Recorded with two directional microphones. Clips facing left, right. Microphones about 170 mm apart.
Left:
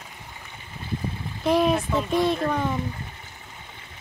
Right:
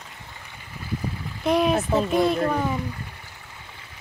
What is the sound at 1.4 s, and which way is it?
Speech, centre (ahead or behind).